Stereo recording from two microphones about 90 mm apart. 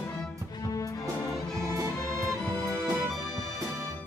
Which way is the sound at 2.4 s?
35° left (ahead or behind).